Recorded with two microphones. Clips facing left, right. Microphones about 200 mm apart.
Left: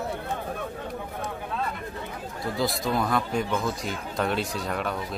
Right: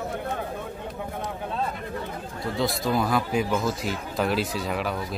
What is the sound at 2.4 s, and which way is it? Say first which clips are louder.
Speech: right 1 dB; centre (ahead or behind).